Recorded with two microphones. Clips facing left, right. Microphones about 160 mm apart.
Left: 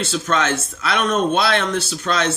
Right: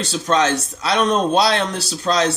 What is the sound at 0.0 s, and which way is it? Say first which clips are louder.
Speech: right 2 dB; 35° right (ahead or behind).